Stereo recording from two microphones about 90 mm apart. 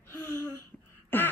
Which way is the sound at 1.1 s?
25° left (ahead or behind).